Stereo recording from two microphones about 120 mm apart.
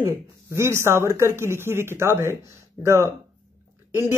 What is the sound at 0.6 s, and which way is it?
Speech, 20° right (ahead or behind).